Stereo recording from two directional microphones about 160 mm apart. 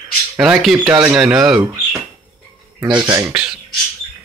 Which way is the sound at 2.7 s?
25° right (ahead or behind).